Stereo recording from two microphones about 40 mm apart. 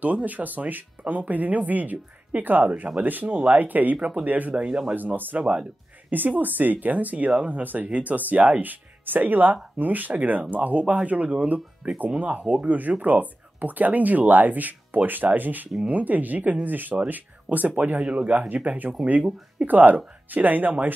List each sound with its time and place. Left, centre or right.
0.0 s speech: right
4.6 s speech: right
4.9 s speech: right